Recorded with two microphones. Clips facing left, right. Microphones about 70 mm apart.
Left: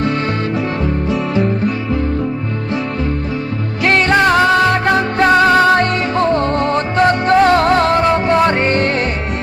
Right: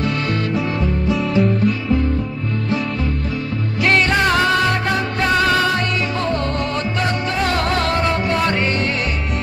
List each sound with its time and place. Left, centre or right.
3.8 s music: left